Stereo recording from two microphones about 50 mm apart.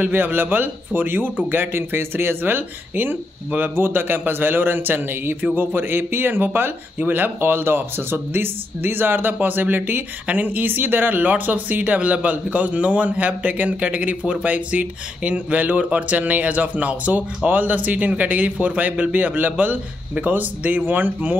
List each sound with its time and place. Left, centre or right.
0.0 s a man's voice: right